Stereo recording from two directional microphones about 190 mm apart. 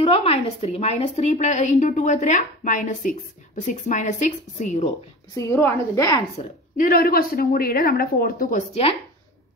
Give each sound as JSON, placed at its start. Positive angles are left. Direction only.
{"t": 0.0, "sound": "a woman's voice", "side_deg": 30}
{"t": 5.5, "sound": "a woman's voice", "side_deg": 15}
{"t": 6.8, "sound": "a woman's voice", "side_deg": 50}